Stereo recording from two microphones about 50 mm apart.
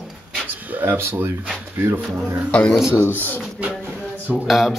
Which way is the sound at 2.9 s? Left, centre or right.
Left.